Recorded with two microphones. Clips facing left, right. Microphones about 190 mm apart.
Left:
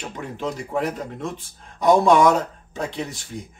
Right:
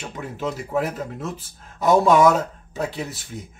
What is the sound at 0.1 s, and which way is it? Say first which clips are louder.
Speech: right 2 dB; 5° right (ahead or behind).